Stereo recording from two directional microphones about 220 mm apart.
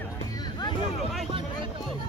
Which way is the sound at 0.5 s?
20° left (ahead or behind).